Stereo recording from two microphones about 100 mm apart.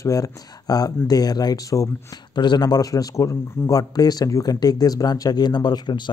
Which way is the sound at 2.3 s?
45° left (ahead or behind).